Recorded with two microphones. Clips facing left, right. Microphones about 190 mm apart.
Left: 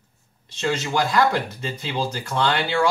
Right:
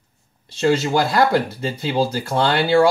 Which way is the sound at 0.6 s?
35° right (ahead or behind).